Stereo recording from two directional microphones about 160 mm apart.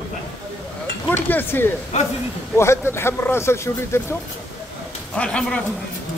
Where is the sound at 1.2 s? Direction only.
10° left (ahead or behind).